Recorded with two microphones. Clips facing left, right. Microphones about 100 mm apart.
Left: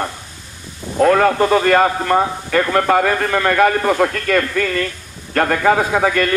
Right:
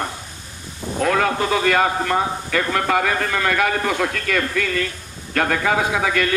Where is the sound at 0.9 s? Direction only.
45° left (ahead or behind).